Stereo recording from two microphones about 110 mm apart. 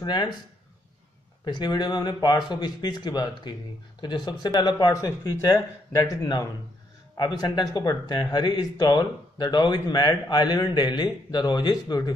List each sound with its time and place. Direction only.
0.0 s speech: 45° left (ahead or behind)
1.4 s speech: 40° left (ahead or behind)